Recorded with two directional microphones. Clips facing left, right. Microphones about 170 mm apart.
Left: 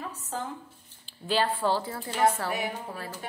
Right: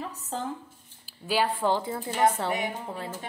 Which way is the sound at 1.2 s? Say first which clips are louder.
Right 1 dB; 10° right (ahead or behind).